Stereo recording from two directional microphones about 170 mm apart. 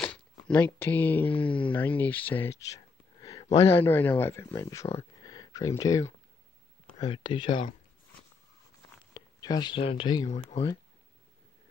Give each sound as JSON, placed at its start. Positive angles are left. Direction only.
{"t": 0.0, "sound": "a sound", "side_deg": 10}
{"t": 1.3, "sound": "speech", "side_deg": 30}
{"t": 1.7, "sound": "speech", "side_deg": 10}
{"t": 5.2, "sound": "a sound", "side_deg": 25}
{"t": 7.0, "sound": "speech", "side_deg": 25}
{"t": 9.1, "sound": "speech", "side_deg": 25}